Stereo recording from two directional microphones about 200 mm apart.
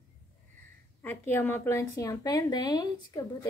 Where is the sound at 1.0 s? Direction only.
10° left (ahead or behind).